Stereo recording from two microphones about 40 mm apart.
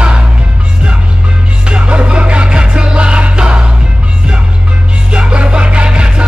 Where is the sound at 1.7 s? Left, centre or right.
Right.